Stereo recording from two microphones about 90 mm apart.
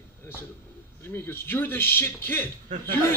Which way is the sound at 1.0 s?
25° left (ahead or behind).